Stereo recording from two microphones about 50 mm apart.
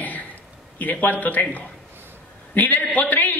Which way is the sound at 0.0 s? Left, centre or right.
Left.